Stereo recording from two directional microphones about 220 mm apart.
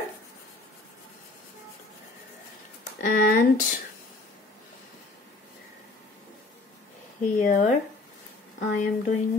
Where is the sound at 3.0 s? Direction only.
40° left (ahead or behind).